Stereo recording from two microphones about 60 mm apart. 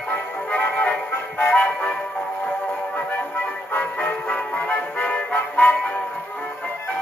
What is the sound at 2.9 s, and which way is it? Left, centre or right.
Music, left.